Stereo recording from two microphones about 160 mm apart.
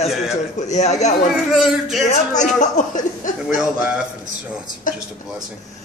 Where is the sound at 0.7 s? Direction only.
45° left (ahead or behind).